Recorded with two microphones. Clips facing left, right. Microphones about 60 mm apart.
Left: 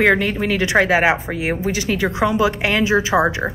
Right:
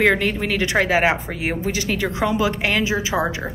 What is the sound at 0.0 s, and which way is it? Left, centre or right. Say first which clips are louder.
A woman's voice: left 2 dB; left.